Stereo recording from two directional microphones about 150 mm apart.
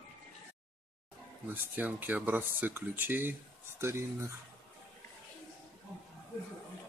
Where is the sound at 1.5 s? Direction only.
10° right (ahead or behind).